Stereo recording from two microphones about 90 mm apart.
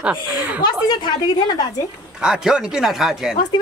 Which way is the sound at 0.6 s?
50° left (ahead or behind).